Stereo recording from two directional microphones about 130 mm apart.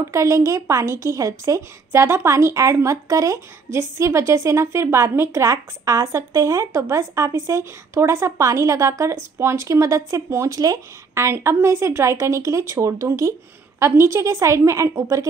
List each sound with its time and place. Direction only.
0.1 s a woman's voice: 25° right (ahead or behind)